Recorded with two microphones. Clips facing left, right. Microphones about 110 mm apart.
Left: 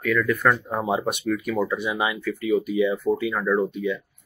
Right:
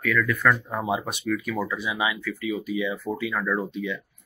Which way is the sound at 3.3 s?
20° left (ahead or behind).